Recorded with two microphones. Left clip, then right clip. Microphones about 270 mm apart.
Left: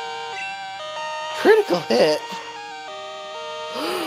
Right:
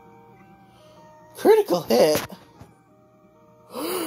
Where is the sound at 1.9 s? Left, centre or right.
Centre.